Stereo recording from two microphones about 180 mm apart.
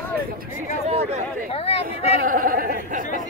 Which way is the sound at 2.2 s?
50° right (ahead or behind).